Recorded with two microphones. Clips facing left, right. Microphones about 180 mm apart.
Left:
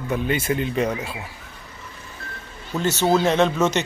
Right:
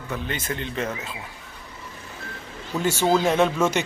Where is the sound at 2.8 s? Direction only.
10° right (ahead or behind).